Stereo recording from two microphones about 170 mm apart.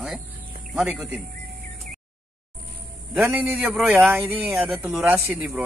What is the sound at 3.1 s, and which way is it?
A man's voice, 10° right (ahead or behind).